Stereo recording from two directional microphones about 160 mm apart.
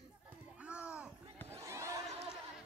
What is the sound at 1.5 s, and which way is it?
Crowd, 20° right (ahead or behind).